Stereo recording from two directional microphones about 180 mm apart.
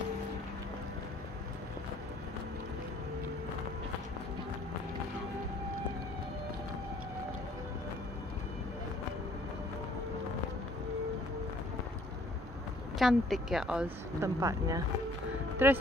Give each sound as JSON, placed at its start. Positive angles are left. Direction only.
{"t": 13.0, "sound": "speech", "side_deg": 0}
{"t": 14.2, "sound": "speech", "side_deg": -20}